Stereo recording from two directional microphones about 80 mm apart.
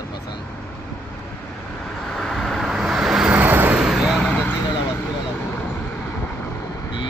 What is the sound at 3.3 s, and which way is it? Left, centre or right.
Vehicle, right.